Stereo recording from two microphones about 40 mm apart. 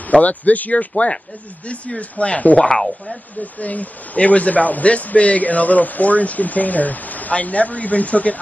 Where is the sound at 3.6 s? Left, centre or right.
Left.